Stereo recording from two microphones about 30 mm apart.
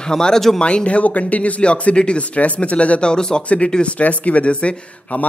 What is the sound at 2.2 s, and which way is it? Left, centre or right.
Speech, left.